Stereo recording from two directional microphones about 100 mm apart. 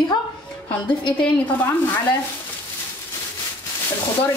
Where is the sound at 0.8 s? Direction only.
55° left (ahead or behind).